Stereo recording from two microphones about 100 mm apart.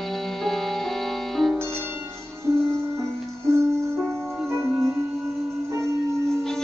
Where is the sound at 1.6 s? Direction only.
25° right (ahead or behind).